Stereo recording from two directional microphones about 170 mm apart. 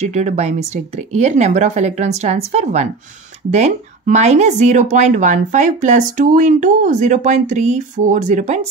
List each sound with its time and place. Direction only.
0.0 s speech: 40° right (ahead or behind)